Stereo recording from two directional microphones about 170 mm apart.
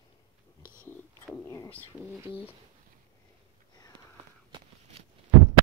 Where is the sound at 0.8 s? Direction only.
5° left (ahead or behind).